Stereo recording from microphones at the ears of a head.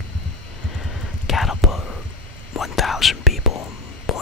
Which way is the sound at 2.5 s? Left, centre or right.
Left.